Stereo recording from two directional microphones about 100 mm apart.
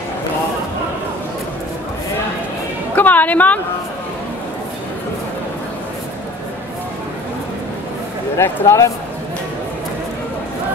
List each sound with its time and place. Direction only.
3.0 s a woman's voice: 15° left (ahead or behind)
8.4 s speech: 25° left (ahead or behind)